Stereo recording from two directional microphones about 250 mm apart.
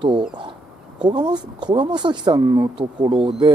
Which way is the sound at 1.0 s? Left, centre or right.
Centre.